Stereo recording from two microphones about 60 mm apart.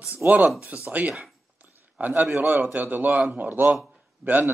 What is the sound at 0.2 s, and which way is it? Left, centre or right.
A man's voice, right.